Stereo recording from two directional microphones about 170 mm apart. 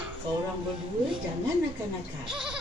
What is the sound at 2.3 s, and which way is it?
Goat, 5° right (ahead or behind).